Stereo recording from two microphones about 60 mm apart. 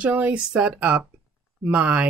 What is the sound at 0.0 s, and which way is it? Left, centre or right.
Speech, right.